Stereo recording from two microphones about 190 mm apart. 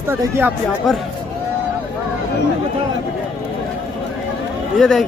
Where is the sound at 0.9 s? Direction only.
Centre (ahead or behind).